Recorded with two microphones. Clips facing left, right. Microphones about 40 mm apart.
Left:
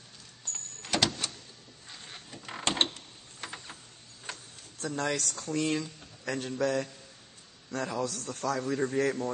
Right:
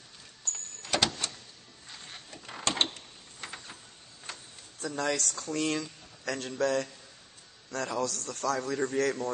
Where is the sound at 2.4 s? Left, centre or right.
Left.